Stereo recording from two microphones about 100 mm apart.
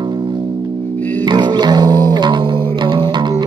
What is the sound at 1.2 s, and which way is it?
Music, 45° right (ahead or behind).